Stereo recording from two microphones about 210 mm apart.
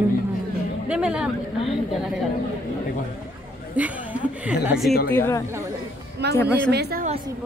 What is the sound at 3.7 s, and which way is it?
Chuckle, 5° right (ahead or behind).